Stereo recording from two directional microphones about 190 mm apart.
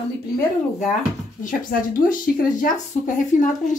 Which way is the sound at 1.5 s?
45° left (ahead or behind).